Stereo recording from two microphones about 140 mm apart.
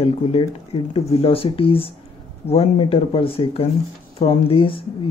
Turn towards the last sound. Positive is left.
turn(degrees=40)  # may be behind; listen again after turning